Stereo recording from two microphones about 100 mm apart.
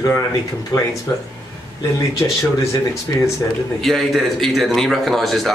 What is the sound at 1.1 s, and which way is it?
Speech, 20° left (ahead or behind).